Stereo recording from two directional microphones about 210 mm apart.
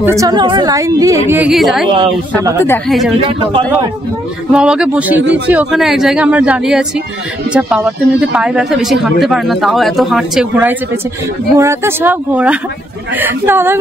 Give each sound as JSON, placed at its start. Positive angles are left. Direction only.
{"t": 0.0, "sound": "a woman's voice", "side_deg": -15}
{"t": 1.3, "sound": "speech", "side_deg": -5}
{"t": 3.2, "sound": "speech", "side_deg": -25}
{"t": 4.5, "sound": "a woman's voice", "side_deg": -5}